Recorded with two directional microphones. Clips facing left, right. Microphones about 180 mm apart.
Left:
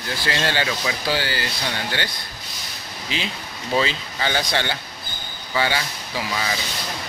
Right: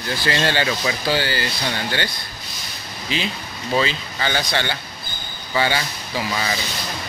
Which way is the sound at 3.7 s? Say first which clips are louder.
Right 1 dB; 25° left (ahead or behind).